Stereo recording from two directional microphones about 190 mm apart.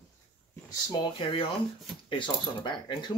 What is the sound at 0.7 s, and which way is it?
Speech, 25° left (ahead or behind).